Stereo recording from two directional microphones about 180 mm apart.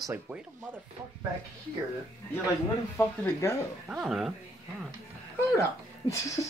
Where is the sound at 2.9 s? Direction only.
10° left (ahead or behind).